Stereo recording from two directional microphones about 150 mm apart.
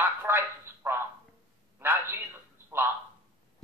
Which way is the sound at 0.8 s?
15° right (ahead or behind).